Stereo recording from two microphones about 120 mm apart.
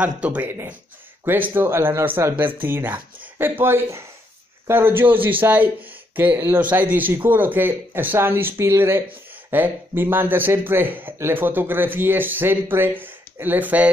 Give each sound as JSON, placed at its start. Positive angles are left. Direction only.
{"t": 0.0, "sound": "speech", "side_deg": -10}